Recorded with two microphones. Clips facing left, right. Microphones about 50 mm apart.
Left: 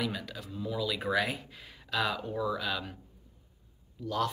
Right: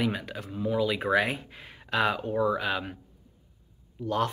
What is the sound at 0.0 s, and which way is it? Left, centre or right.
Speech, right.